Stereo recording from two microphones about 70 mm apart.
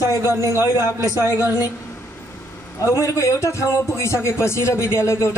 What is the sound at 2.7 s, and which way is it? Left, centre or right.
A man's voice, left.